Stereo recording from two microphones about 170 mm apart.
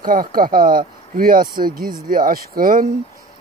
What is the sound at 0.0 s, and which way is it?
Speech, 55° right (ahead or behind).